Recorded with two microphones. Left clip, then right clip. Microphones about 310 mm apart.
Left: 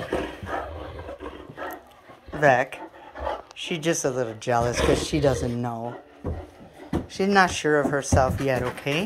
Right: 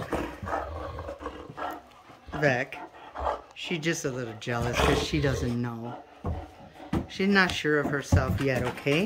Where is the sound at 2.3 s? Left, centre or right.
Centre.